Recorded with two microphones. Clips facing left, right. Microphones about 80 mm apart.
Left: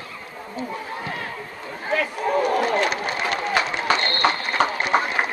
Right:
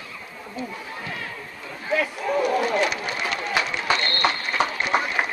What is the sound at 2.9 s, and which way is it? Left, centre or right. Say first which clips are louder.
Run: left 3 dB; left.